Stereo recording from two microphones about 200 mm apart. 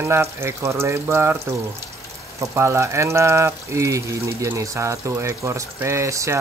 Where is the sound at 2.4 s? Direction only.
15° right (ahead or behind).